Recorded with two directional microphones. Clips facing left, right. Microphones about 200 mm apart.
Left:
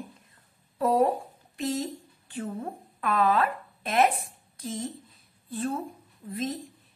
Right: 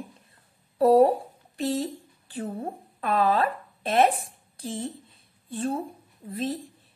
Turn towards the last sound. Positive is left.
turn(degrees=-35)  # may be behind; listen again after turning